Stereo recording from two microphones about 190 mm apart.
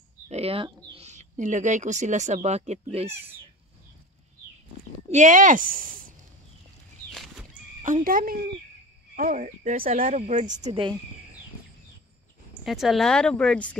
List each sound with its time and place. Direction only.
0.3 s speech: 30° right (ahead or behind)
5.1 s speech: 40° right (ahead or behind)
7.8 s a woman's voice: 45° right (ahead or behind)
10.6 s speech: 25° right (ahead or behind)
12.6 s speech: centre (ahead or behind)